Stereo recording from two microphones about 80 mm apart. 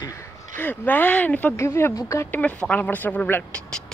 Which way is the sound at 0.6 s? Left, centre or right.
Left.